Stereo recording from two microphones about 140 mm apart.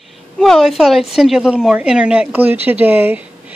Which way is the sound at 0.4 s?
Centre (ahead or behind).